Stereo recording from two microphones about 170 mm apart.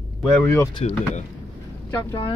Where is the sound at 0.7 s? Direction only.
40° left (ahead or behind).